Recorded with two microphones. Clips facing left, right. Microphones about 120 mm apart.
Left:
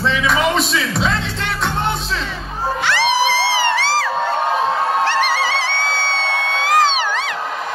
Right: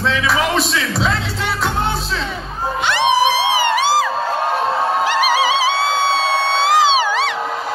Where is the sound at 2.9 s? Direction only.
20° right (ahead or behind).